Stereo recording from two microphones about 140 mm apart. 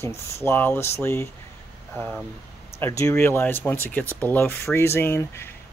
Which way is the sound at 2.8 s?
20° left (ahead or behind).